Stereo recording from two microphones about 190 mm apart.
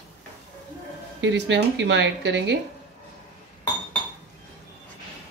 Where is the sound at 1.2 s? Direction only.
70° right (ahead or behind).